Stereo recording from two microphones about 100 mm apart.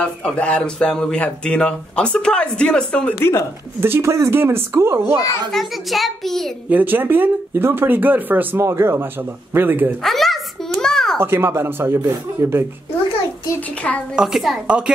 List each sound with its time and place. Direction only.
0.0 s speech: 10° left (ahead or behind)
3.2 s speech: 25° left (ahead or behind)
3.8 s speech: 25° right (ahead or behind)
5.5 s a child's voice: centre (ahead or behind)
6.7 s speech: 20° right (ahead or behind)
10.0 s a sound: centre (ahead or behind)
11.1 s speech: 25° right (ahead or behind)
14.1 s a child's voice: 5° right (ahead or behind)